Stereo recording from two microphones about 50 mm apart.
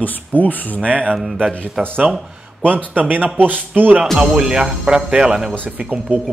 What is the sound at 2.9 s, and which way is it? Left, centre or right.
A man's voice, right.